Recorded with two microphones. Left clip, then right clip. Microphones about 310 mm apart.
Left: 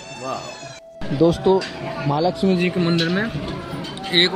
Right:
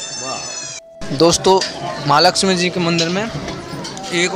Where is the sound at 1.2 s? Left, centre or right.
Right.